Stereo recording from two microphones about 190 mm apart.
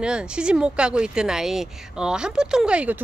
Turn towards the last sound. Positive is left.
turn(degrees=-5)  # may be behind; listen again after turning